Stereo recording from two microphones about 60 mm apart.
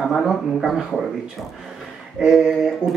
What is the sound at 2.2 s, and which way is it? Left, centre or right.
Speech, centre.